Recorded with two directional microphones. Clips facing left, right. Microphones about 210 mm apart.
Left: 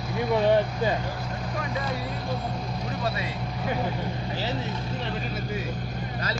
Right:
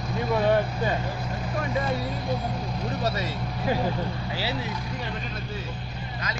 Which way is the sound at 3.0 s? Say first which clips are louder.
Right 1 dB; 40° right (ahead or behind).